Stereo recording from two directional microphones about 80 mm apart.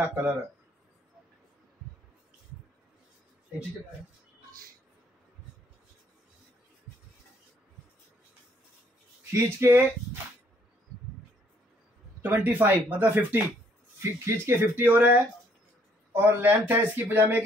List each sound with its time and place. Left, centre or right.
0.0 s speech: right
9.3 s speech: right
12.2 s speech: right